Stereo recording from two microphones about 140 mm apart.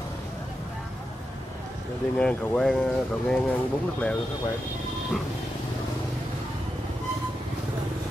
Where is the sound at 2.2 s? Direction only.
5° left (ahead or behind).